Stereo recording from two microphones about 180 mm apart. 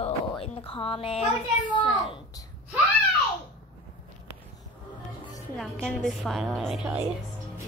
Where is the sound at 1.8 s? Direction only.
25° left (ahead or behind).